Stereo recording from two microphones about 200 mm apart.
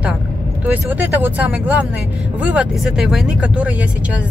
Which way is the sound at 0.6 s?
10° right (ahead or behind).